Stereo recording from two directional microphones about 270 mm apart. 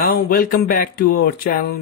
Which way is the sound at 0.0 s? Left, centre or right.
Left.